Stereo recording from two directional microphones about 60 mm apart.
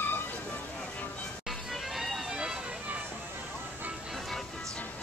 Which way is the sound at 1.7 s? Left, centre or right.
Centre.